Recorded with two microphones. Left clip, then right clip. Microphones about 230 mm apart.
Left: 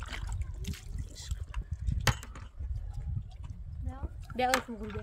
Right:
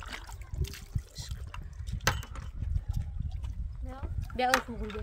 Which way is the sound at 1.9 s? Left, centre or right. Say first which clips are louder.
Right 1 dB; centre.